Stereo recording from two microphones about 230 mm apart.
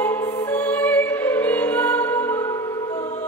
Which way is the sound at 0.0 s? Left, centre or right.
Centre.